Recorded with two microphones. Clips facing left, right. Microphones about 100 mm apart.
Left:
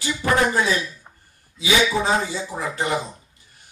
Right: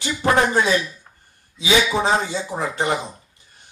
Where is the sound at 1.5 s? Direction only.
20° right (ahead or behind).